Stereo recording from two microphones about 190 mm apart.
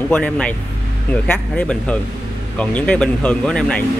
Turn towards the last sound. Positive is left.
turn(degrees=5)  # may be behind; listen again after turning